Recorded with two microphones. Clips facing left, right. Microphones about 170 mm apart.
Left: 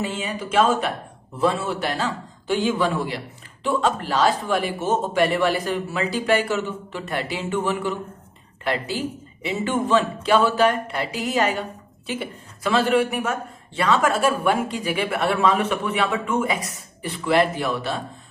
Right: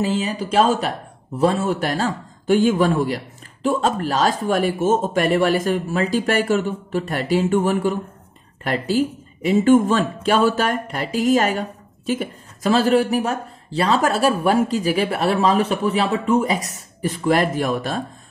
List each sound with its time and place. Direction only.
0.0 s speech: 35° right (ahead or behind)